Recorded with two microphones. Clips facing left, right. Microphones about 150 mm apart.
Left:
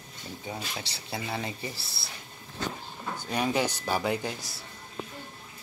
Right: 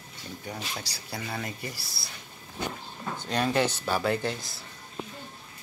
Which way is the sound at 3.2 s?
10° left (ahead or behind).